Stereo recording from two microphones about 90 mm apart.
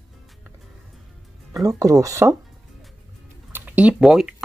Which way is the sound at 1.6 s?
40° right (ahead or behind).